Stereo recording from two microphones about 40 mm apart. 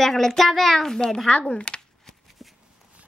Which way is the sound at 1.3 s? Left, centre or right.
Left.